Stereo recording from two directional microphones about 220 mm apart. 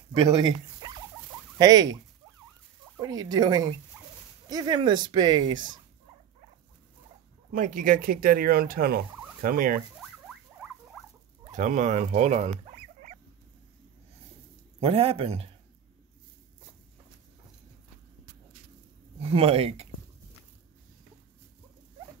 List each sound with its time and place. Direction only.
0.3 s speech: 20° right (ahead or behind)
1.6 s fowl: 15° right (ahead or behind)
3.0 s speech: 20° right (ahead or behind)
3.9 s dog: 10° right (ahead or behind)
4.5 s speech: 20° right (ahead or behind)
7.5 s speech: 35° right (ahead or behind)
11.5 s speech: 35° right (ahead or behind)
14.8 s speech: 25° right (ahead or behind)
19.2 s speech: 25° right (ahead or behind)